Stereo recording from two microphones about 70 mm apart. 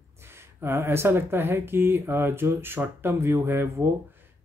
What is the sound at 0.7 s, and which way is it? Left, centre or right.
Speech, right.